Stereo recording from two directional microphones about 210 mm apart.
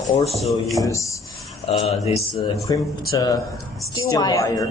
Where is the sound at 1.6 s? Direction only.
30° left (ahead or behind).